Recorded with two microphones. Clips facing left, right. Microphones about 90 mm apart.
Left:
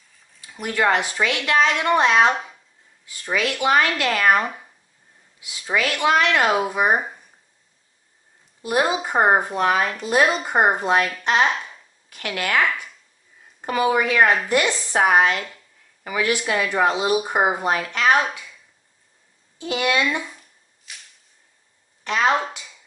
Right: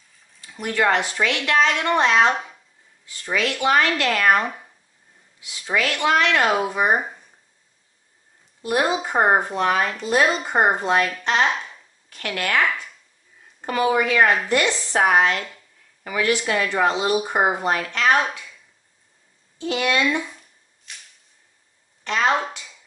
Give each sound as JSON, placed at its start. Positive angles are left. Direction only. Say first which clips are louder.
{"t": 0.4, "sound": "speech", "louder": "even", "side_deg": 10}
{"t": 3.1, "sound": "speech", "louder": "even", "side_deg": 10}
{"t": 5.4, "sound": "speech", "louder": "even", "side_deg": 15}
{"t": 8.6, "sound": "speech", "louder": "even", "side_deg": 10}
{"t": 12.1, "sound": "speech", "louder": "even", "side_deg": 10}
{"t": 19.6, "sound": "a sound", "louder": "even", "side_deg": 10}
{"t": 22.0, "sound": "speech", "louder": "left 1 dB", "side_deg": 10}